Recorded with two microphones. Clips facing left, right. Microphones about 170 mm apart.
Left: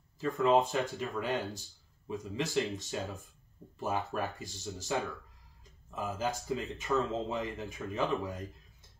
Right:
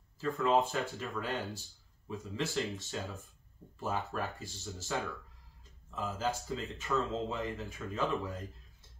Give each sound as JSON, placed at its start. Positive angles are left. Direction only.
{"t": 0.2, "sound": "speech", "side_deg": 20}
{"t": 5.9, "sound": "speech", "side_deg": 15}